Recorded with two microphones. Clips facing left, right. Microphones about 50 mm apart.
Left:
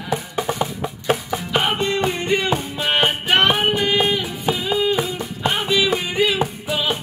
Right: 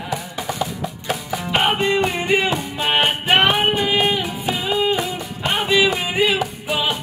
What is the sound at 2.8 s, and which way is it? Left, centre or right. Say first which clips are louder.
Music: right 2 dB; right.